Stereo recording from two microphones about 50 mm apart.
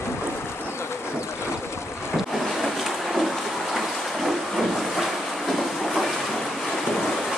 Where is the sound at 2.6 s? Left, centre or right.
Centre.